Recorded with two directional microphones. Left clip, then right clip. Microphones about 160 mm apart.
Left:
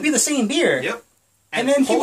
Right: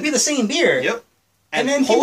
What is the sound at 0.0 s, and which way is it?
Speech, 15° left (ahead or behind).